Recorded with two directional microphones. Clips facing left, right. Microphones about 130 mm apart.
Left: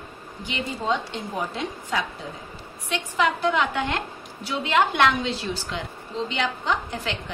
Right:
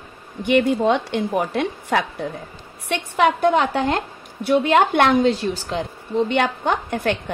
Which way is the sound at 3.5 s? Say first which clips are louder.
Right 5 dB; 40° right (ahead or behind).